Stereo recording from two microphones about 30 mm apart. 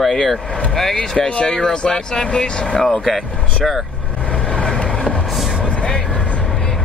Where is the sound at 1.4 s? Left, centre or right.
Left.